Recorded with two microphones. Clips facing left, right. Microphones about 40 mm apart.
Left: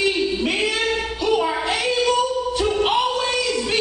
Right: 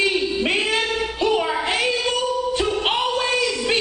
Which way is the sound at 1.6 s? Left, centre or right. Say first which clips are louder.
Right 1 dB; right.